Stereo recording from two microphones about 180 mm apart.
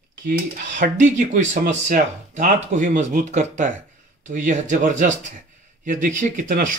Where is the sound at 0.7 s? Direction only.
45° right (ahead or behind).